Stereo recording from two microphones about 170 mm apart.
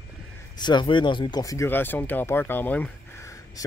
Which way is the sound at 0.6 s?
25° left (ahead or behind).